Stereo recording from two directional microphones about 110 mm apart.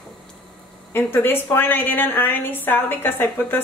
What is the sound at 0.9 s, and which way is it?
A woman's voice, 20° left (ahead or behind).